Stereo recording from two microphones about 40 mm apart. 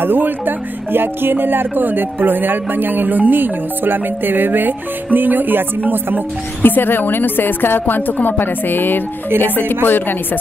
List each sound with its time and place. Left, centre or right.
0.0 s music: right
6.6 s speech: left